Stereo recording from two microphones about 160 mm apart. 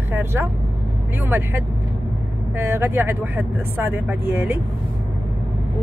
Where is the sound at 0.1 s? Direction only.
15° right (ahead or behind).